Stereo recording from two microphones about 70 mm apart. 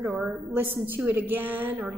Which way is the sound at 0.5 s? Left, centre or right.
Right.